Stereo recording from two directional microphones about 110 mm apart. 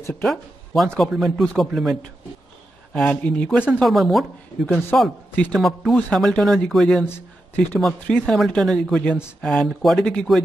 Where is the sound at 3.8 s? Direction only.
Centre (ahead or behind).